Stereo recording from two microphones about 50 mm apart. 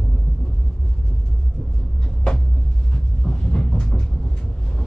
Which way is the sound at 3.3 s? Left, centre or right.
Centre.